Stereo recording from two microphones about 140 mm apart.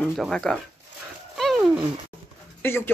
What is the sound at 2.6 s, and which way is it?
Speech, 15° left (ahead or behind).